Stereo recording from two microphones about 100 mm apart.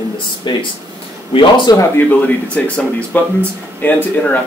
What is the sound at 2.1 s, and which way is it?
A man's voice, 15° left (ahead or behind).